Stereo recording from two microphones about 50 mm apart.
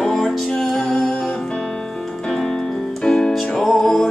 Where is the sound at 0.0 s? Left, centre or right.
Centre.